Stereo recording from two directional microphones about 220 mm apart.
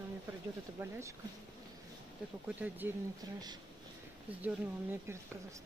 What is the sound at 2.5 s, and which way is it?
Speech, 10° right (ahead or behind).